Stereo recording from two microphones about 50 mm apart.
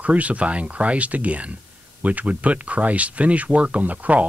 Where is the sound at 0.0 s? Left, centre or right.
Right.